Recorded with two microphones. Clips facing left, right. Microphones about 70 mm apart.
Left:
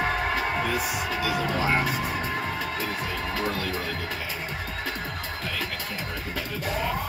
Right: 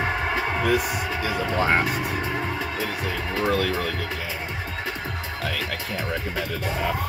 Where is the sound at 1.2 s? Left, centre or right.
Right.